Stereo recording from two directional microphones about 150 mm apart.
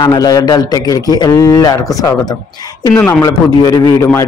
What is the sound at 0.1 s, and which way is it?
A man's voice, 25° left (ahead or behind).